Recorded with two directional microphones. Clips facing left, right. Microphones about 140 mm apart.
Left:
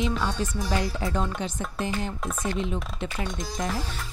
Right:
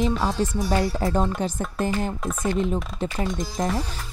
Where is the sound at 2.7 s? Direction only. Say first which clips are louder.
Right 5 dB; 35° right (ahead or behind).